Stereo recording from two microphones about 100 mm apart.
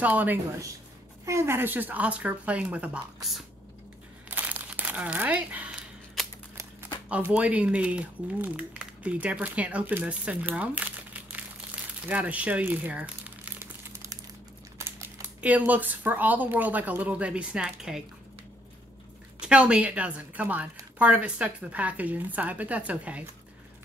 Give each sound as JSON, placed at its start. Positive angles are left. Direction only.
{"t": 0.0, "sound": "speech", "side_deg": -15}
{"t": 1.2, "sound": "speech", "side_deg": -30}
{"t": 4.3, "sound": "crumpling", "side_deg": -15}
{"t": 7.1, "sound": "speech", "side_deg": -15}
{"t": 13.6, "sound": "crumpling", "side_deg": -25}
{"t": 14.8, "sound": "a sound", "side_deg": -25}
{"t": 15.4, "sound": "speech", "side_deg": -15}
{"t": 19.4, "sound": "speech", "side_deg": -10}